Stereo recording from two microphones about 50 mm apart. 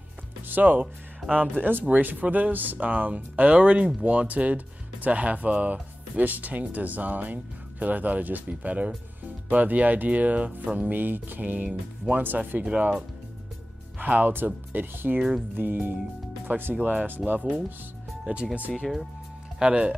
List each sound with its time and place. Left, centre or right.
0.5 s speech: right
13.9 s speech: right
16.7 s speech: right
18.2 s speech: right